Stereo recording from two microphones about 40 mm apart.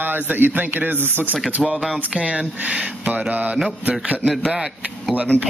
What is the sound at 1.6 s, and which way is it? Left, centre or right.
Mantra, centre.